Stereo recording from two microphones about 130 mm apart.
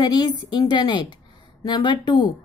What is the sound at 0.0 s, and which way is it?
A woman's voice, 30° left (ahead or behind).